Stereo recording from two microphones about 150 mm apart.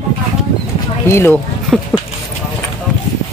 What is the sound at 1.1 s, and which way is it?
Speech, 15° left (ahead or behind).